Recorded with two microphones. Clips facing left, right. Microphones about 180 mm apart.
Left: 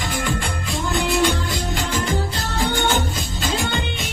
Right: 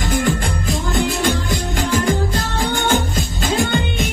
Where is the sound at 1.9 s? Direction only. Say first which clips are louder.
Right 8 dB; 50° right (ahead or behind).